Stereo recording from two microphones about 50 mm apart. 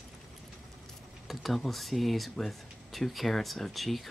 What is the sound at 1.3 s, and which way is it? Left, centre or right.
Speech, centre.